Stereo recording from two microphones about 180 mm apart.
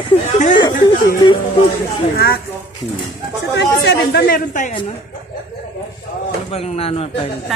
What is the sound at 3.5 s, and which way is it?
Speech, 70° left (ahead or behind).